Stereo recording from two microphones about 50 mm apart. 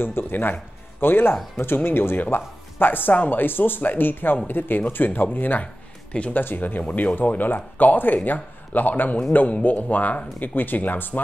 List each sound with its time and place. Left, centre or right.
0.0 s speech: left
6.8 s speech: left
7.2 s speech: left